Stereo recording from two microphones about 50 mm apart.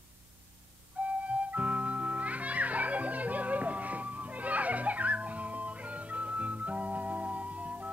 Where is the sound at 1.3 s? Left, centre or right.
Right.